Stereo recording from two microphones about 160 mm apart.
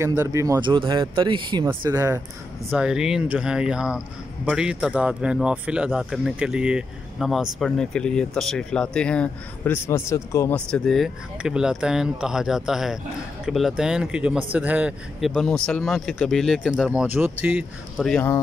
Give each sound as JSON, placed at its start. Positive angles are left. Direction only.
{"t": 0.0, "sound": "speech", "side_deg": -20}
{"t": 1.8, "sound": "speech", "side_deg": -20}
{"t": 2.7, "sound": "a man's voice", "side_deg": -5}
{"t": 10.7, "sound": "a man's voice", "side_deg": 0}